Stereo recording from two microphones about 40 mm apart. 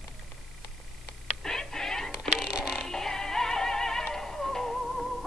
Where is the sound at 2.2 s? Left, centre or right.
Right.